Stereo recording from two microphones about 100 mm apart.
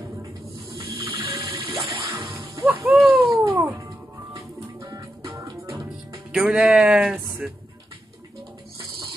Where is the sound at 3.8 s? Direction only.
30° right (ahead or behind).